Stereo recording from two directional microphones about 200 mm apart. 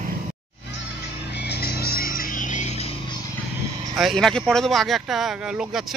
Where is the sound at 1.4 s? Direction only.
55° left (ahead or behind); by 2.9 s 35° left (ahead or behind).